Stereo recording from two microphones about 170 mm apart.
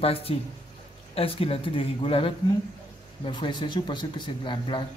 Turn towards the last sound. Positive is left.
turn(degrees=30)  # may be behind; listen again after turning